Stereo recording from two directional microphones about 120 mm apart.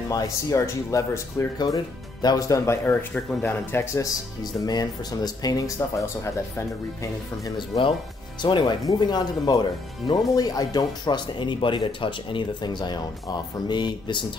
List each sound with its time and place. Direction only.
0.1 s speech: 30° left (ahead or behind)
8.4 s speech: 40° left (ahead or behind)